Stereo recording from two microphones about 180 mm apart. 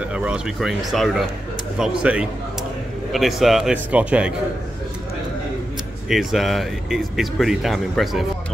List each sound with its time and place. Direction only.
0.1 s speech: 5° right (ahead or behind)
6.0 s speech: centre (ahead or behind)